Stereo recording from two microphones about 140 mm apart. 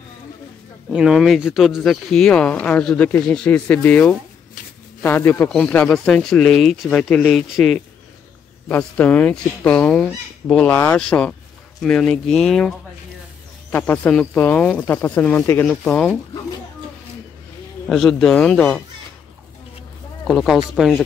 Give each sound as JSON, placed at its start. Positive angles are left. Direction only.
{"t": 0.9, "sound": "speech", "side_deg": -5}
{"t": 17.8, "sound": "speech", "side_deg": 0}
{"t": 20.2, "sound": "speech", "side_deg": 0}